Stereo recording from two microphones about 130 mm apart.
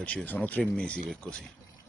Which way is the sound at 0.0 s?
10° left (ahead or behind).